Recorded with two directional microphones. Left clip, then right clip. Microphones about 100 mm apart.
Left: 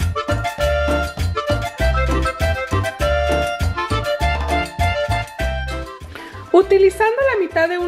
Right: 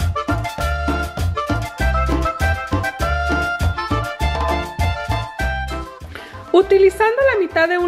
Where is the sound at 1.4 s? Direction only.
Centre (ahead or behind).